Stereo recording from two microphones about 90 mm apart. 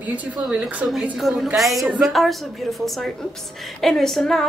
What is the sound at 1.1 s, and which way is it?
A woman's voice, centre (ahead or behind).